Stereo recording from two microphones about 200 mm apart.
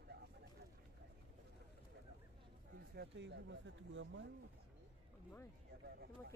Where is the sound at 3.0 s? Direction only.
60° right (ahead or behind).